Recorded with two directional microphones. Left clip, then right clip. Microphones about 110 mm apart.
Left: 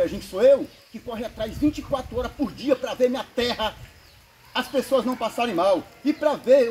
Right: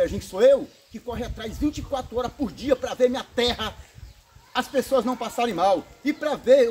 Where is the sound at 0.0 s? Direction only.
15° right (ahead or behind).